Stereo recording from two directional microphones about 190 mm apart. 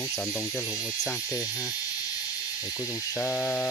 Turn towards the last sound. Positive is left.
turn(degrees=5)  # may be behind; listen again after turning